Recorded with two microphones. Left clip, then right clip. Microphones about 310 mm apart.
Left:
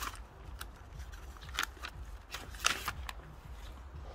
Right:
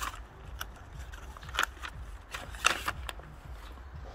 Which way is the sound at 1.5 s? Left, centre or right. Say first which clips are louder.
Right 6 dB; centre.